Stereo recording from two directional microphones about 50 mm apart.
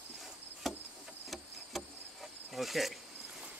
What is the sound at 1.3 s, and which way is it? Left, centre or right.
Insect, centre.